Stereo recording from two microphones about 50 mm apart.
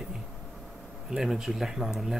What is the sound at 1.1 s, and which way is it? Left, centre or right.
Speech, centre.